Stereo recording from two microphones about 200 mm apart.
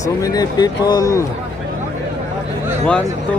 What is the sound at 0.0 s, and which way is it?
Speech, 20° left (ahead or behind).